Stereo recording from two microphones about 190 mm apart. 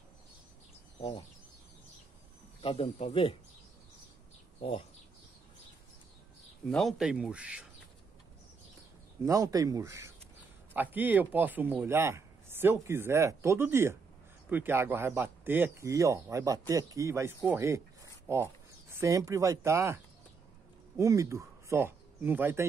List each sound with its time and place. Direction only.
2.6 s speech: 30° left (ahead or behind)
4.6 s speech: 30° left (ahead or behind)
6.7 s speech: centre (ahead or behind)
9.2 s speech: 15° right (ahead or behind)
21.0 s speech: 15° right (ahead or behind)